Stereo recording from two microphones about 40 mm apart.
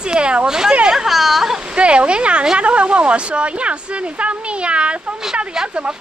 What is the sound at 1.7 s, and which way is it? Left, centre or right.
Speech, right.